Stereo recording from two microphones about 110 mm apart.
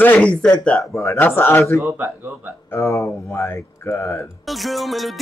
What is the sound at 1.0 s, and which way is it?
Speech, 20° left (ahead or behind).